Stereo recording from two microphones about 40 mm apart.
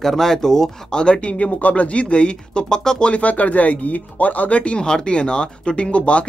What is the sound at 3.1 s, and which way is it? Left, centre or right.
Speech, left.